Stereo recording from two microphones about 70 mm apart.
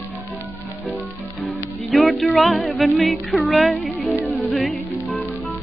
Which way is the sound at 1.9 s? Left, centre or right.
Centre.